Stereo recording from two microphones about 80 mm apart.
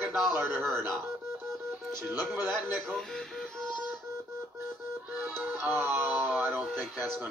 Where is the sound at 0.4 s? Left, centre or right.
Right.